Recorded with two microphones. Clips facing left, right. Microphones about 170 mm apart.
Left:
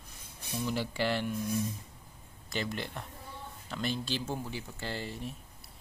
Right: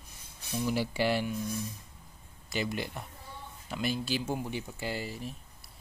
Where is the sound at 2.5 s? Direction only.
10° right (ahead or behind).